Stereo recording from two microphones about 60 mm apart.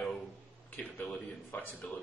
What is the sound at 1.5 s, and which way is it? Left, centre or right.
Speech, left.